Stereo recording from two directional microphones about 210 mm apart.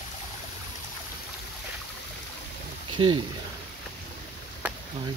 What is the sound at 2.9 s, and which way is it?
Speech, 20° right (ahead or behind).